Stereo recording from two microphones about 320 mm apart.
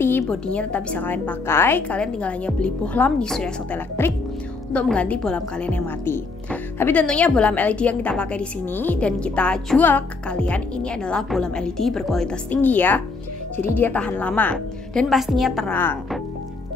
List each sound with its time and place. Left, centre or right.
0.0 s speech: centre